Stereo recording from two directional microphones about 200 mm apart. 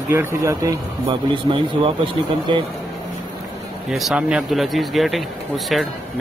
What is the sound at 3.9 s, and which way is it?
Speech, 5° right (ahead or behind).